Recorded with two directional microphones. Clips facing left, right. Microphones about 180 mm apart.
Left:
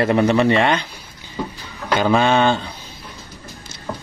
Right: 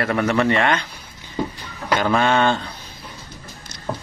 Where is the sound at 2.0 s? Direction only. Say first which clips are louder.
Left 3 dB; 20° left (ahead or behind).